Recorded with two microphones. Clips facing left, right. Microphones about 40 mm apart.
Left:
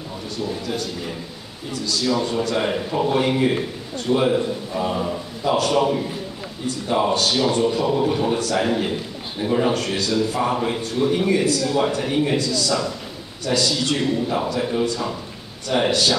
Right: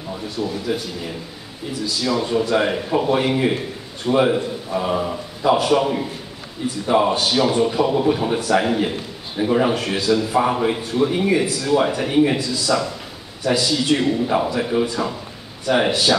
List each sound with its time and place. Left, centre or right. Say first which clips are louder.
0.4 s speech: right 2 dB; centre
1.7 s a man's voice: even; centre